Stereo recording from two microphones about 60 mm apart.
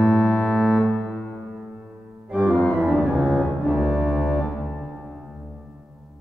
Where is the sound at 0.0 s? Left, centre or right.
Centre.